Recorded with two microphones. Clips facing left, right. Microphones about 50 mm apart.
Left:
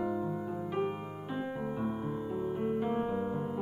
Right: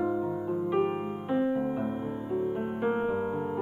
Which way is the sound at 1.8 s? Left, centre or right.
Right.